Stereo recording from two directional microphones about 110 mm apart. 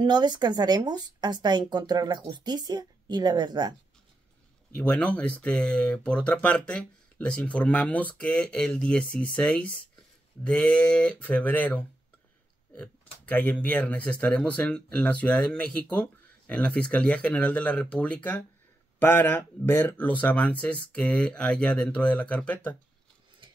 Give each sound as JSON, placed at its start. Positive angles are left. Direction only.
{"t": 0.0, "sound": "speech", "side_deg": -40}
{"t": 4.7, "sound": "speech", "side_deg": 10}